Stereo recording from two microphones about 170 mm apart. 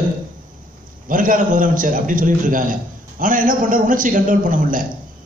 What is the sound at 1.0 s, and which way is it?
A man's voice, 50° right (ahead or behind).